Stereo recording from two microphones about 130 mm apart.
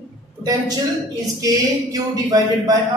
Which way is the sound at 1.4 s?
30° right (ahead or behind).